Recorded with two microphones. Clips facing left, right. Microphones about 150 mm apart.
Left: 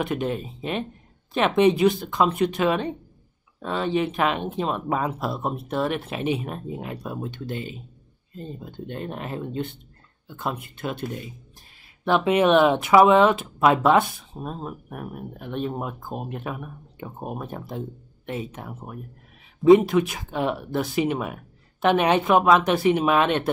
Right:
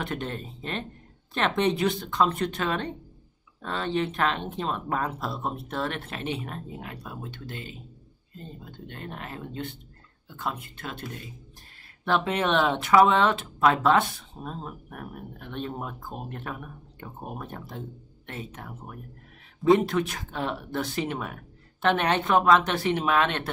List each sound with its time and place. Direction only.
0.0 s speech: 10° left (ahead or behind)
8.8 s speech: 20° left (ahead or behind)